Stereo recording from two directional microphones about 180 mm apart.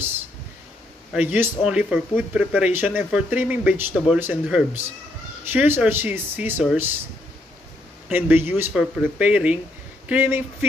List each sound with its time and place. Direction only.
1.1 s speech: 10° right (ahead or behind)
8.1 s speech: 10° right (ahead or behind)